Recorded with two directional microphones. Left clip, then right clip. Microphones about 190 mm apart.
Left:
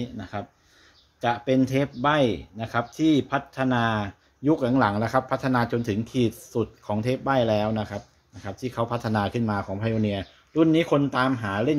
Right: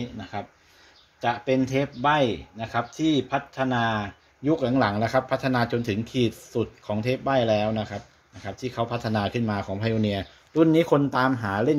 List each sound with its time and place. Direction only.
0.0 s speech: 25° left (ahead or behind); by 11.7 s 5° left (ahead or behind)